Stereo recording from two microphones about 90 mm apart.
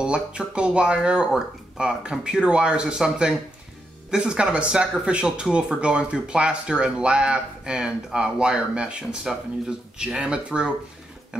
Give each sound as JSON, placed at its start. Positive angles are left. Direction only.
{"t": 0.0, "sound": "speech", "side_deg": -10}